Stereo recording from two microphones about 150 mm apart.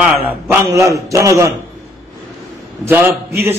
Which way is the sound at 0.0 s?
10° right (ahead or behind).